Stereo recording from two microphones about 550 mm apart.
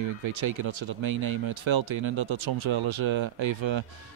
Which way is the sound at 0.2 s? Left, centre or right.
Right.